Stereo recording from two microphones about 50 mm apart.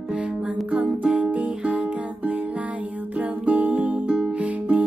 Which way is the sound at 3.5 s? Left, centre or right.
Right.